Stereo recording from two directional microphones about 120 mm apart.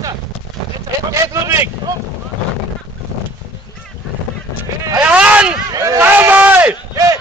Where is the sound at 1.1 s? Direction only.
25° right (ahead or behind).